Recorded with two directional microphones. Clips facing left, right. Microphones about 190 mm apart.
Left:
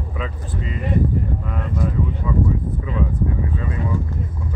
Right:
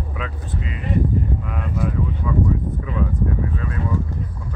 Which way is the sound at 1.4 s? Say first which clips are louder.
Even; 5° right (ahead or behind).